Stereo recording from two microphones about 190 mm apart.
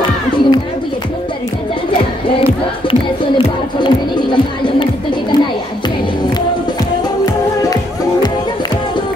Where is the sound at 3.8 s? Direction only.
25° left (ahead or behind).